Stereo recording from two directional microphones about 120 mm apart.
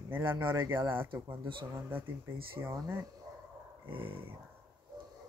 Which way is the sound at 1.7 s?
20° right (ahead or behind).